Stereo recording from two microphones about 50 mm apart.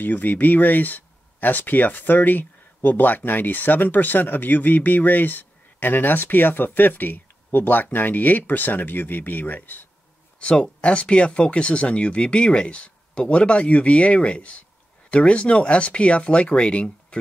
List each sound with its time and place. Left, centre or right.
0.0 s speech: left
10.4 s speech: left